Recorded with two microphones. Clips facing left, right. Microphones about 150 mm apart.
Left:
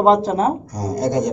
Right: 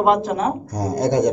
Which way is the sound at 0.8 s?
60° right (ahead or behind).